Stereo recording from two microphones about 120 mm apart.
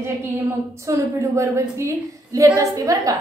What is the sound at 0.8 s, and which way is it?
A woman's voice, 25° right (ahead or behind).